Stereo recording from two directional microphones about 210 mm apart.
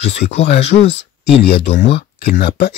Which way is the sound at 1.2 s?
50° left (ahead or behind).